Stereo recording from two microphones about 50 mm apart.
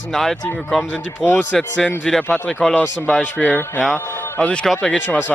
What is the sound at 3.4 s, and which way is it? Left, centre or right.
Speech, left.